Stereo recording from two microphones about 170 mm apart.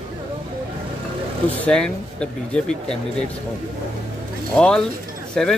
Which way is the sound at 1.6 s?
5° left (ahead or behind).